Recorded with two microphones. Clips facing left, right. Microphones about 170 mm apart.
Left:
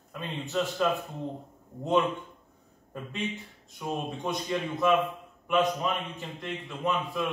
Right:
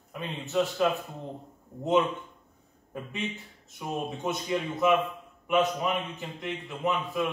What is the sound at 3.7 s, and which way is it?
A man's voice, 5° right (ahead or behind).